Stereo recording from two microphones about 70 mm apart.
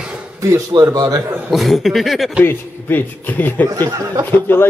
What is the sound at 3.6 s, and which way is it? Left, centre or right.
Speech, right.